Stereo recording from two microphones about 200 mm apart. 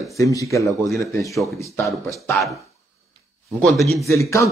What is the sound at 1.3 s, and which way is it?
Speech, centre (ahead or behind).